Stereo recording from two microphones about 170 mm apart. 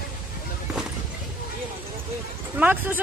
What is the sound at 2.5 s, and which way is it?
Speech, 10° right (ahead or behind).